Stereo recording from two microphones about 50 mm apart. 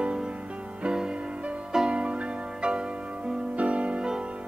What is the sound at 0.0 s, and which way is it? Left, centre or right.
Music, centre.